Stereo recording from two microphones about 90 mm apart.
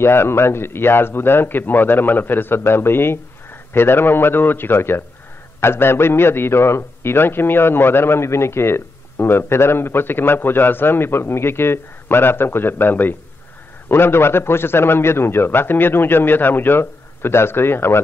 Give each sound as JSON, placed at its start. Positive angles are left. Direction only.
{"t": 0.0, "sound": "a man's voice", "side_deg": 25}